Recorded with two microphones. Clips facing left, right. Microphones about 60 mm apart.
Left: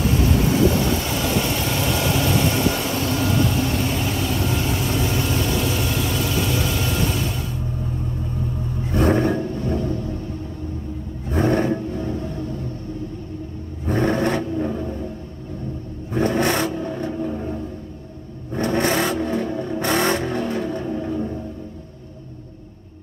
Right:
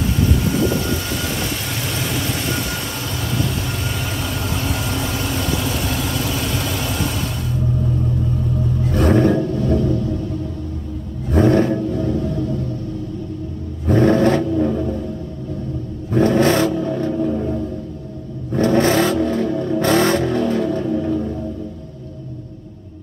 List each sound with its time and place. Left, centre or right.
8.8 s roar: centre
9.1 s a sound: centre
11.2 s roar: centre
11.8 s music: centre
13.8 s vehicle: centre
14.7 s music: centre
16.1 s vehicle: centre
17.1 s a sound: centre
18.5 s vehicle: centre